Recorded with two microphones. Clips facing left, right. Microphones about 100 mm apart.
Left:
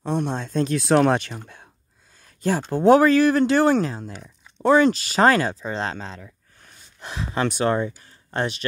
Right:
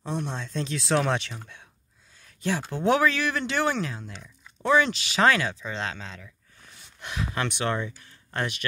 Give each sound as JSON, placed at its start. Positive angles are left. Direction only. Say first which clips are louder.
{"t": 0.0, "sound": "speech", "louder": "left 7 dB", "side_deg": 55}
{"t": 2.2, "sound": "a sound", "louder": "left 5 dB", "side_deg": 40}
{"t": 2.7, "sound": "speech", "louder": "left 9 dB", "side_deg": 40}